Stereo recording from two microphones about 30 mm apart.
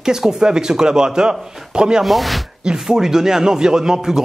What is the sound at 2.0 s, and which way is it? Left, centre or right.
Speech, centre.